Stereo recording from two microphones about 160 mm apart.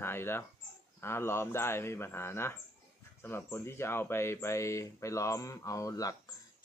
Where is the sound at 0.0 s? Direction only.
15° left (ahead or behind).